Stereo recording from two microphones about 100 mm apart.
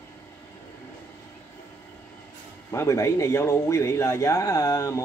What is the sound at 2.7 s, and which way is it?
Speech, 30° left (ahead or behind).